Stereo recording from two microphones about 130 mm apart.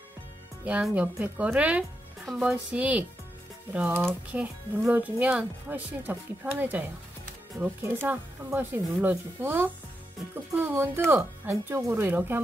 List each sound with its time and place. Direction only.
0.8 s speech: 10° right (ahead or behind)